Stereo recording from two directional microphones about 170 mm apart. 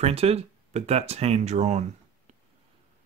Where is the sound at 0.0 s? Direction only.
35° right (ahead or behind).